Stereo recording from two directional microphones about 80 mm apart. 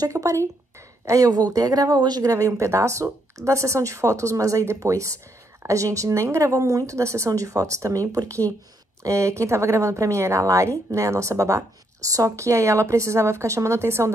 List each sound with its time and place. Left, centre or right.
0.0 s speech: right